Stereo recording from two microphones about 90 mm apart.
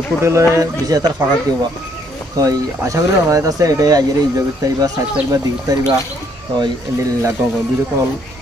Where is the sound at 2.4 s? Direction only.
40° right (ahead or behind).